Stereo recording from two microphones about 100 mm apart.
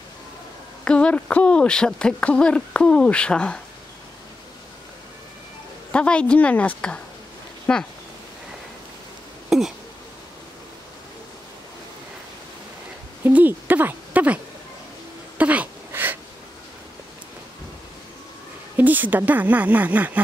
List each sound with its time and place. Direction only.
0.8 s speech: 10° left (ahead or behind)
5.9 s speech: 10° left (ahead or behind)
9.5 s a sound: 5° right (ahead or behind)
13.2 s speech: 20° right (ahead or behind)
15.3 s a sound: 15° right (ahead or behind)
18.8 s speech: 20° right (ahead or behind)